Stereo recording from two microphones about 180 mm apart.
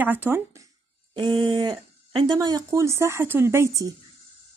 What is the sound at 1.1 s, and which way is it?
A woman's voice, 25° right (ahead or behind).